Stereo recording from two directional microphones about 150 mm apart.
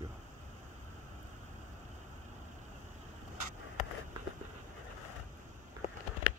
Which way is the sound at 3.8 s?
50° left (ahead or behind).